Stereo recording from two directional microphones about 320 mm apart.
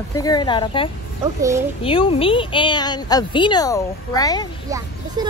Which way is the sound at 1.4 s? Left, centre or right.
Centre.